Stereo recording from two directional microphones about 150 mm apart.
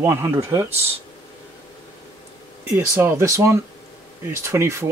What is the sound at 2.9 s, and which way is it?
Speech, 20° right (ahead or behind).